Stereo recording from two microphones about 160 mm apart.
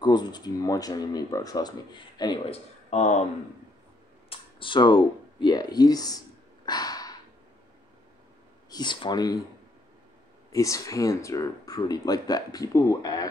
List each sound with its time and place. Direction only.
0.0 s speech: 25° left (ahead or behind)
2.5 s speech: 45° left (ahead or behind)
4.3 s speech: 30° left (ahead or behind)
6.6 s a sound: 25° left (ahead or behind)
8.6 s speech: 25° left (ahead or behind)
10.5 s speech: 20° left (ahead or behind)